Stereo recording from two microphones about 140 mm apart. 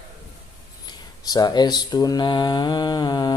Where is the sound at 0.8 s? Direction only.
30° left (ahead or behind).